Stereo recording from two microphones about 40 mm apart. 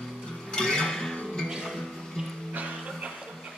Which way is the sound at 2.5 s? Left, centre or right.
Right.